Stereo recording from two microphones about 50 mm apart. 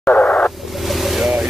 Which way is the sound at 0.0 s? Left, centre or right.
Left.